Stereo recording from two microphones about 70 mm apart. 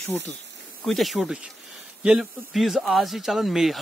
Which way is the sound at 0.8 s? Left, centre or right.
Centre.